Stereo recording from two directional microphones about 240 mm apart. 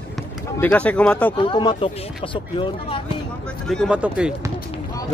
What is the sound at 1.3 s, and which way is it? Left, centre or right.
Speech, left.